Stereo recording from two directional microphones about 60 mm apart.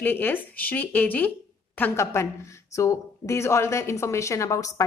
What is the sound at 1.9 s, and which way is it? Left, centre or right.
A woman's voice, left.